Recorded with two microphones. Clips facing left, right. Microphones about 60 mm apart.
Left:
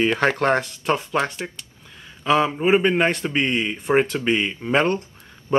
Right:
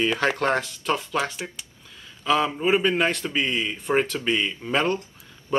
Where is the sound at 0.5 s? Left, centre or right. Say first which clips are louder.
Left 3 dB; left.